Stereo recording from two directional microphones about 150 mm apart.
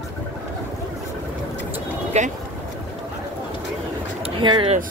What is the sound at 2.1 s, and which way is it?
Speech, 45° right (ahead or behind).